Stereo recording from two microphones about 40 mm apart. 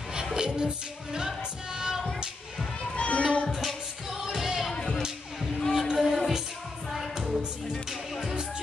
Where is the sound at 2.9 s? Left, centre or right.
Left.